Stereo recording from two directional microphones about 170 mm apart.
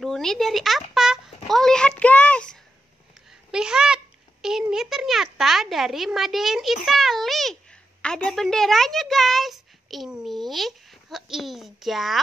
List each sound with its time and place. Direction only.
0.0 s speech: 5° left (ahead or behind)
0.9 s a sound: centre (ahead or behind)
3.5 s a woman's voice: 5° right (ahead or behind)